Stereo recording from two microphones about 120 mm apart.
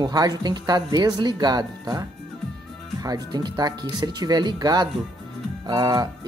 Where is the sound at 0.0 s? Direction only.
35° right (ahead or behind).